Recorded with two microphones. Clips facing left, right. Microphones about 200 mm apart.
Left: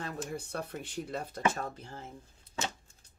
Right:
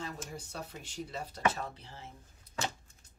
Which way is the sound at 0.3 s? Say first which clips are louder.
Left 6 dB; 60° left (ahead or behind).